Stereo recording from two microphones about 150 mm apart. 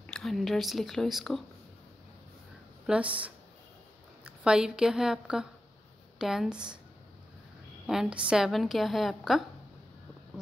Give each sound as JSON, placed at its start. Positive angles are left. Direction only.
{"t": 0.0, "sound": "a woman's voice", "side_deg": 5}
{"t": 2.9, "sound": "a woman's voice", "side_deg": -10}
{"t": 7.8, "sound": "a woman's voice", "side_deg": -5}